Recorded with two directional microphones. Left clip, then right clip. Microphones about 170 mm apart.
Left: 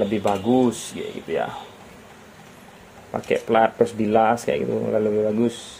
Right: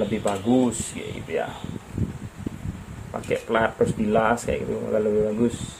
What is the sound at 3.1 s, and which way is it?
Speech, 45° left (ahead or behind).